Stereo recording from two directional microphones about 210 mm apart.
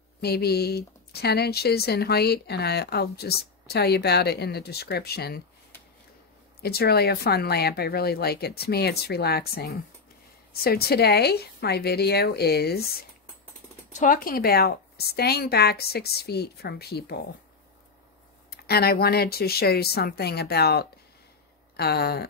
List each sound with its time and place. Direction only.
0.2 s speech: 50° left (ahead or behind)
6.6 s speech: 50° left (ahead or behind)
13.9 s speech: 40° left (ahead or behind)
18.5 s speech: 50° left (ahead or behind)